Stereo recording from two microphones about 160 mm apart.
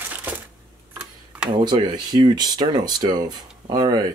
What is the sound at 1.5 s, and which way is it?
Speech, 30° right (ahead or behind).